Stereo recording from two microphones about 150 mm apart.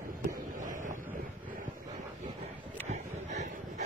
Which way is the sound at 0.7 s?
60° right (ahead or behind).